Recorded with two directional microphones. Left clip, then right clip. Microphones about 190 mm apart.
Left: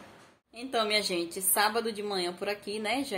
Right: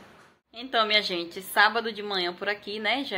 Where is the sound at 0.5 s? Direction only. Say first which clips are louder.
Right 5 dB; 10° left (ahead or behind).